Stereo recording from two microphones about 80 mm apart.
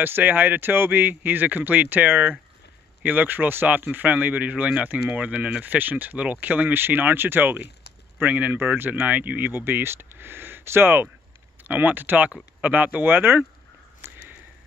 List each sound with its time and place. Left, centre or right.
0.0 s speech: right